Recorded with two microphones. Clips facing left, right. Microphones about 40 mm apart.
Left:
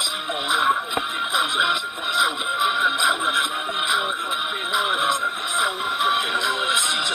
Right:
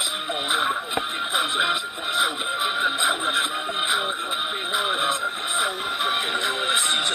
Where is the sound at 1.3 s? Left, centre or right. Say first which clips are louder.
Left 2 dB; left.